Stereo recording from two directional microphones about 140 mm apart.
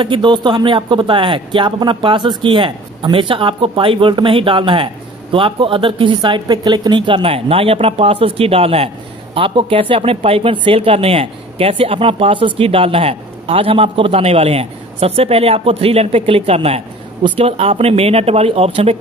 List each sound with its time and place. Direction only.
0.0 s speech: 35° right (ahead or behind)